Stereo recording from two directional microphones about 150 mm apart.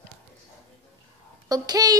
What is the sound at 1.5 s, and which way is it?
Speech, 25° right (ahead or behind).